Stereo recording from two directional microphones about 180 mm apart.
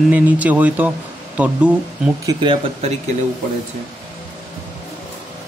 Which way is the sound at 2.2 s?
30° right (ahead or behind).